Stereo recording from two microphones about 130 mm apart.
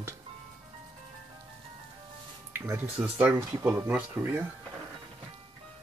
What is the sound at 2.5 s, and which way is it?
Music, 20° right (ahead or behind).